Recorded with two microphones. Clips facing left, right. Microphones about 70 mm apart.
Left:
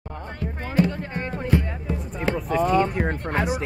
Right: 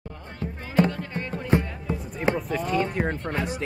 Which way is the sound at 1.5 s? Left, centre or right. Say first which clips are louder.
Right 1 dB; right.